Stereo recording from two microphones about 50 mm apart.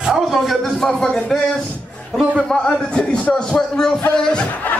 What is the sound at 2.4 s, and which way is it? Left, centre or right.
A man's voice, centre.